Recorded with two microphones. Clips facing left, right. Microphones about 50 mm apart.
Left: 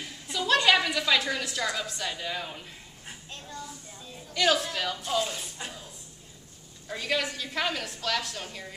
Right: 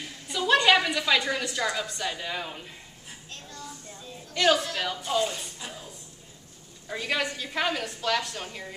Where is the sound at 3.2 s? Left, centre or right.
Centre.